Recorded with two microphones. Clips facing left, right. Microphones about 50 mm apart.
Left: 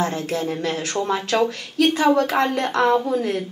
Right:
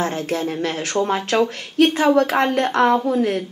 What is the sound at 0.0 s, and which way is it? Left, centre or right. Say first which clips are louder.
Speech: right 1 dB; right.